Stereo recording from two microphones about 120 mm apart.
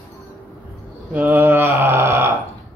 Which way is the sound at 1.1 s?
15° right (ahead or behind).